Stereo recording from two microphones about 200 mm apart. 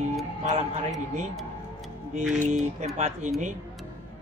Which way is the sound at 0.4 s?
35° right (ahead or behind).